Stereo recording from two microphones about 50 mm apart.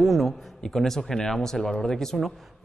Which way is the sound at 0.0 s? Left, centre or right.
Centre.